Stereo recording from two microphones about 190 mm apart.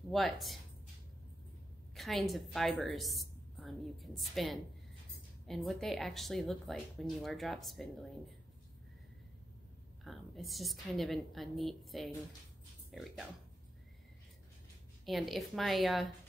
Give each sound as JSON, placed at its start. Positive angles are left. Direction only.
{"t": 0.1, "sound": "a woman's voice", "side_deg": 0}
{"t": 2.0, "sound": "a woman's voice", "side_deg": 0}
{"t": 10.0, "sound": "a woman's voice", "side_deg": 0}
{"t": 15.0, "sound": "a woman's voice", "side_deg": 0}